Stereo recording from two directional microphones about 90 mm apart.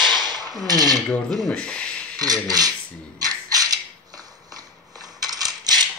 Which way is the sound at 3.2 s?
45° right (ahead or behind).